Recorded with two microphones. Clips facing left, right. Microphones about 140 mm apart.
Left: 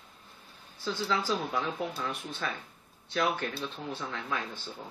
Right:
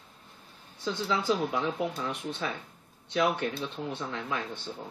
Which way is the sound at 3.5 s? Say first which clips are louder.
Right 2 dB; 5° left (ahead or behind).